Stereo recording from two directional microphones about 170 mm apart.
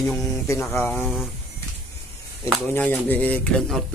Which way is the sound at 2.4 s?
10° left (ahead or behind).